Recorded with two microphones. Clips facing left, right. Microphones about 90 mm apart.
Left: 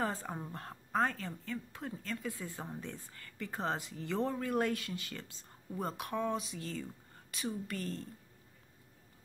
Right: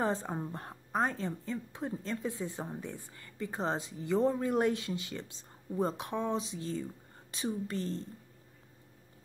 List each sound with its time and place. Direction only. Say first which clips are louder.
0.0 s a woman's voice: right 4 dB; 20° right (ahead or behind)